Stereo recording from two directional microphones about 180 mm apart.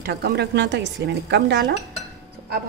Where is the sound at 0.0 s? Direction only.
60° right (ahead or behind).